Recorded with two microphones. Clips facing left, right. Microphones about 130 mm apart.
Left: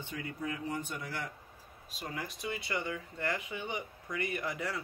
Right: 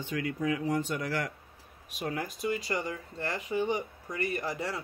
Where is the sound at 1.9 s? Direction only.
70° right (ahead or behind).